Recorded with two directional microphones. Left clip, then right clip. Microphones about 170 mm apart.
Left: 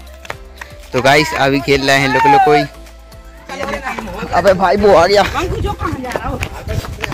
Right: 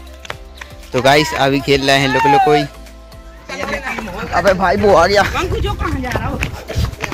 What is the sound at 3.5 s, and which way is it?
Music, 10° left (ahead or behind).